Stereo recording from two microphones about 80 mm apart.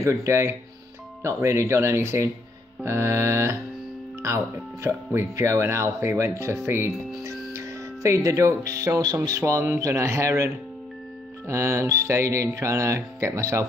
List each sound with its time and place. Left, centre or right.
0.0 s speech: right
9.4 s speech: right